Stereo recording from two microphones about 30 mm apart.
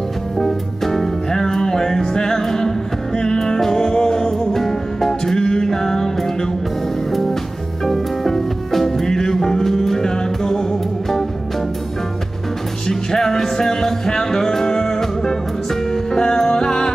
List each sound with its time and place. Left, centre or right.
0.4 s music: centre
1.3 s music: centre
7.1 s music: centre
12.8 s music: centre